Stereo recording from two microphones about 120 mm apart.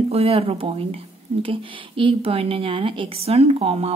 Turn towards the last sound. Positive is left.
turn(degrees=-55)  # may be behind; listen again after turning